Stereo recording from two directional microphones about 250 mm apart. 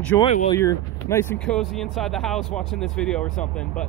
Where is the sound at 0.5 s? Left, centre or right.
Centre.